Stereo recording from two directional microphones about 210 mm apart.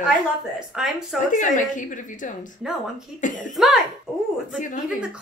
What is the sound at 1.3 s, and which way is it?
A woman's voice, 35° left (ahead or behind).